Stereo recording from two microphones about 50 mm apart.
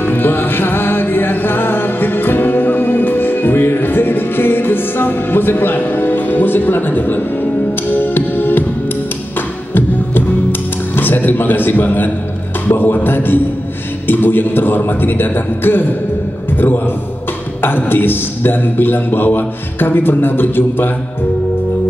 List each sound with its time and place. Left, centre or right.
0.0 s music: left
11.0 s a man's voice: left